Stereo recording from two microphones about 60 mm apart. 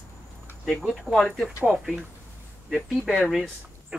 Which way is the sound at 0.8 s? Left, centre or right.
Centre.